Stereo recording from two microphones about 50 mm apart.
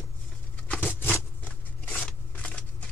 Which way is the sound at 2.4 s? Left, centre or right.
Left.